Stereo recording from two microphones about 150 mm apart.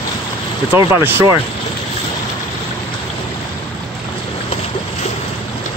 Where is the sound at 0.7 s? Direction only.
15° right (ahead or behind).